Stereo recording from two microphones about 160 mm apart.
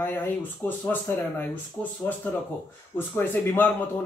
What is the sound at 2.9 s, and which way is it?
Speech, 15° left (ahead or behind).